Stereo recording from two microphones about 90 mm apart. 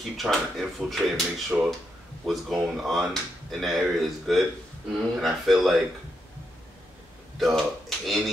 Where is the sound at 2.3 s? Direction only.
Centre (ahead or behind).